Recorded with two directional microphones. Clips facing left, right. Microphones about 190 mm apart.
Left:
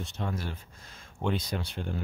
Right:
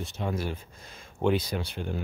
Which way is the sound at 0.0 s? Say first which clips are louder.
Right 3 dB; 5° right (ahead or behind).